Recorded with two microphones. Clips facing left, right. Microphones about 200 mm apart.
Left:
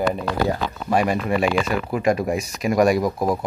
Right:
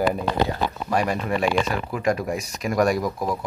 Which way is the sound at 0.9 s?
5° left (ahead or behind).